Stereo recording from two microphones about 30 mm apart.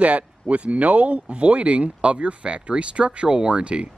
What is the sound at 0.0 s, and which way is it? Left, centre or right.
Speech, right.